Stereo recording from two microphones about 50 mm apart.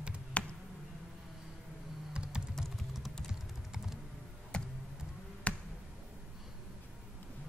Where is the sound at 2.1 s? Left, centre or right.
Centre.